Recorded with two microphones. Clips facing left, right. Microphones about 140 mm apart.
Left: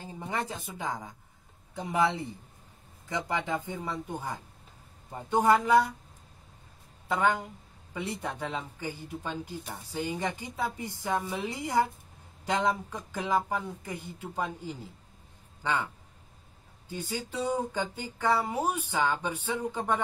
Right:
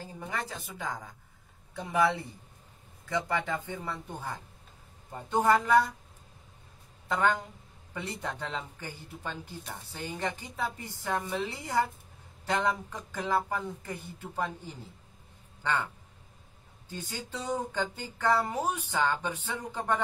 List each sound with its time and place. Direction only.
0.0 s a woman's voice: 20° left (ahead or behind)
7.1 s a man's voice: 10° left (ahead or behind)
17.1 s speech: 10° left (ahead or behind)